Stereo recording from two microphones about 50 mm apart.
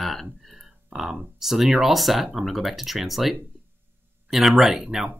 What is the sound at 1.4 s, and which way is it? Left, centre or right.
Speech, centre.